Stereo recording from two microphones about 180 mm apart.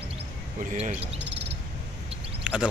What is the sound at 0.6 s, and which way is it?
Speech, 45° right (ahead or behind).